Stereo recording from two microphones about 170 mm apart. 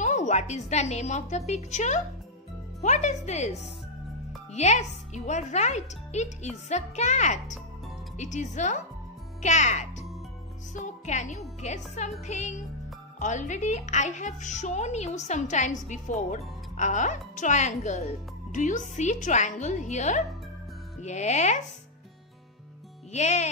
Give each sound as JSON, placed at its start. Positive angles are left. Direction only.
{"t": 0.0, "sound": "a child's voice", "side_deg": 45}
{"t": 23.1, "sound": "music", "side_deg": 40}